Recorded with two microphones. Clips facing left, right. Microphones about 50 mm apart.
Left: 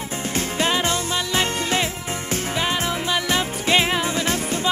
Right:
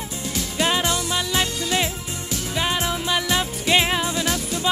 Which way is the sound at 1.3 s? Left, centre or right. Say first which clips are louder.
Left 2 dB; left.